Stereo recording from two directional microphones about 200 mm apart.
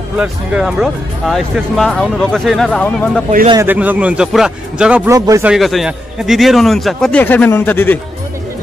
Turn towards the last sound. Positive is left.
turn(degrees=10)  # may be behind; listen again after turning